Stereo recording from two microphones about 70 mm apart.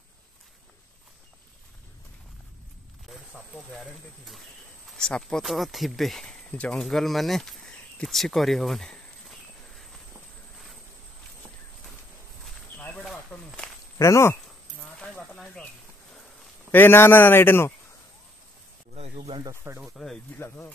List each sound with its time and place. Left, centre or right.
3.3 s speech: centre
4.9 s speech: centre
5.4 s speech: centre
6.5 s speech: centre
6.8 s a sound: centre
12.7 s snake: centre
13.3 s speech: left
13.9 s speech: left
16.7 s a man's voice: left
19.7 s speech: right
20.3 s a man's voice: left